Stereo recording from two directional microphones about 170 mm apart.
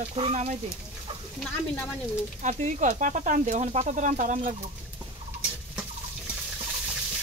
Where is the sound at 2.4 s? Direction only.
45° right (ahead or behind).